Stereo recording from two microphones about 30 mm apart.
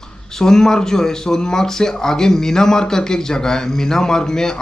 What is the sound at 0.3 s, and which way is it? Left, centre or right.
Speech, centre.